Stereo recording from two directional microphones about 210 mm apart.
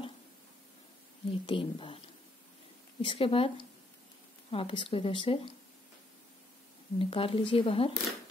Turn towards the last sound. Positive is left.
turn(degrees=25)  # may be behind; listen again after turning